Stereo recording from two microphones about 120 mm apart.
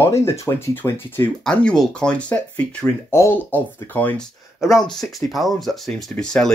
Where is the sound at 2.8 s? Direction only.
20° left (ahead or behind).